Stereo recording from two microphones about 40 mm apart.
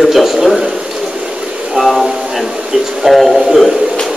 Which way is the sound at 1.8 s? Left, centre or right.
Right.